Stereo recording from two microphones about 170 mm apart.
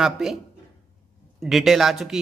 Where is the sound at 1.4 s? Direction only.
Centre (ahead or behind).